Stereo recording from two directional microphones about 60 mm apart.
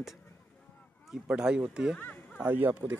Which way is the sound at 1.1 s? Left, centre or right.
Centre.